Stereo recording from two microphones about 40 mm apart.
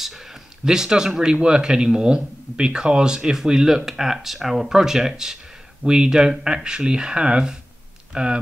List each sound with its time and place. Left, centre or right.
0.7 s speech: centre